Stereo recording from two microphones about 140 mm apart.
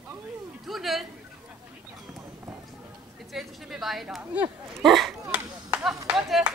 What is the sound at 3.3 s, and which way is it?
Speech, centre (ahead or behind).